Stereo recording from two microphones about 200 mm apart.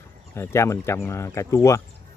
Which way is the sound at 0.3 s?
15° left (ahead or behind).